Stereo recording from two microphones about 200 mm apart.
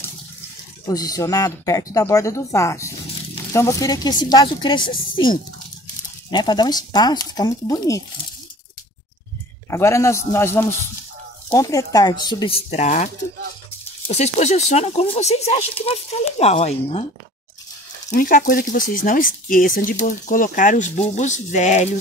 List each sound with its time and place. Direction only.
0.8 s a woman's voice: 20° left (ahead or behind)
9.7 s speech: 15° left (ahead or behind)
12.6 s speech: 35° left (ahead or behind)
18.1 s speech: 45° left (ahead or behind)